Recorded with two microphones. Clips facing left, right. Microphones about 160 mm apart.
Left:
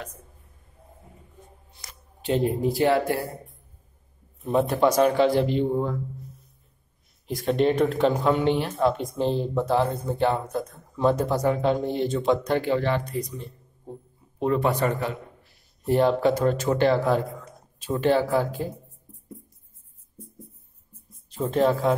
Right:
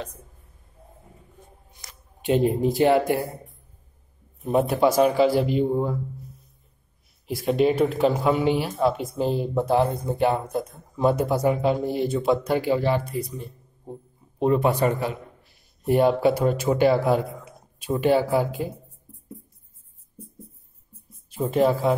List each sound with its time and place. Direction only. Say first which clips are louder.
2.2 s speech: right 3 dB; 15° right (ahead or behind)
4.4 s speech: right 1 dB; 15° right (ahead or behind)
7.2 s speech: right 1 dB; 5° right (ahead or behind)
21.3 s speech: right 1 dB; 10° right (ahead or behind)